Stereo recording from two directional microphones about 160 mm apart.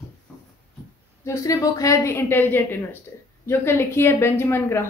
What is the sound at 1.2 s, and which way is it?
A woman's voice, 20° left (ahead or behind).